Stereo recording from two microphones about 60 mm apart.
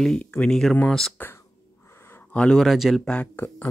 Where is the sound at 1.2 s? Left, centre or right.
Left.